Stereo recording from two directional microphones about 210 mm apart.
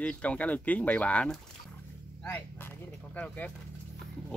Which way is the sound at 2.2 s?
10° left (ahead or behind).